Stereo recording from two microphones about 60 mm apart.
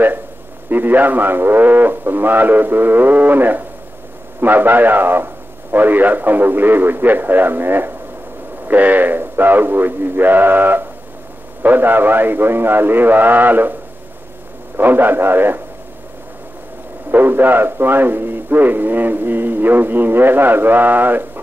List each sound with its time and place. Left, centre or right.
0.7 s a man's voice: right
14.8 s a man's voice: right
17.1 s a man's voice: right